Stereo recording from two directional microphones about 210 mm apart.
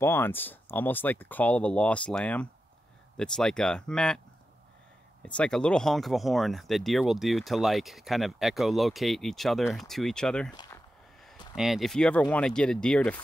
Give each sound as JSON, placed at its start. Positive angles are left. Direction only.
{"t": 0.0, "sound": "speech", "side_deg": 10}
{"t": 5.2, "sound": "speech", "side_deg": 5}
{"t": 10.5, "sound": "speech", "side_deg": 20}
{"t": 11.5, "sound": "speech", "side_deg": 0}